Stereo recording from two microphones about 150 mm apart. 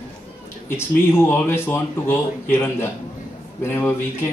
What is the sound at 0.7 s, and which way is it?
Speech, 15° left (ahead or behind).